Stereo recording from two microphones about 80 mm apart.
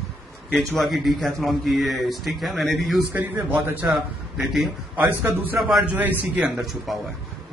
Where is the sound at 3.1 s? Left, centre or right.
Right.